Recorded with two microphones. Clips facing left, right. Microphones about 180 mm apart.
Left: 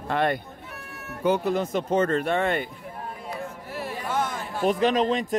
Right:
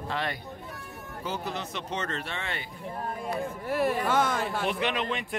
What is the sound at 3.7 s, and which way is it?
Speech, 55° right (ahead or behind).